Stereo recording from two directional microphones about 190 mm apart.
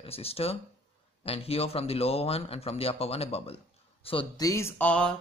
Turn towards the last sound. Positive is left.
turn(degrees=5)  # may be behind; listen again after turning